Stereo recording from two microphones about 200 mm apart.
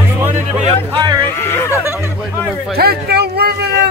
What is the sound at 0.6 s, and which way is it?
Speech, 25° right (ahead or behind).